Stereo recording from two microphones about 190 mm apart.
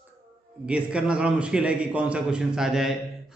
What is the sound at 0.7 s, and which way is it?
A man's voice, 5° right (ahead or behind).